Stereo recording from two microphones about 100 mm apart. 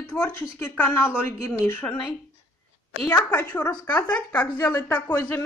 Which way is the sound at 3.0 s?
30° left (ahead or behind).